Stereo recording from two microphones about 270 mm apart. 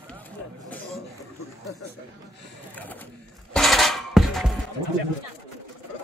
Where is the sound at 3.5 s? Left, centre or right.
Centre.